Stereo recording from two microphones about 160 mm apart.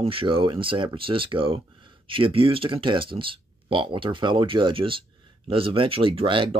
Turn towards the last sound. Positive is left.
turn(degrees=-35)  # may be behind; listen again after turning